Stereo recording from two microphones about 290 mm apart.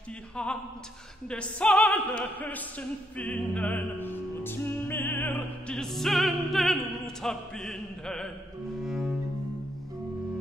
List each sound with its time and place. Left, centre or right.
0.4 s music: centre
8.8 s cello: centre